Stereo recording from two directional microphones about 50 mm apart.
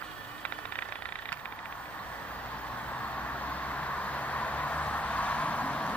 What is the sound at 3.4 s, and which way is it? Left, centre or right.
Vehicle, left.